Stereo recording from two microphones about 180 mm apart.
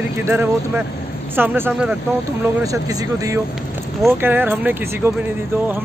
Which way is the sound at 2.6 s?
20° right (ahead or behind).